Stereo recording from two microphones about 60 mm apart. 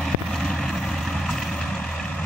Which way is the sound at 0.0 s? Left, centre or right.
Centre.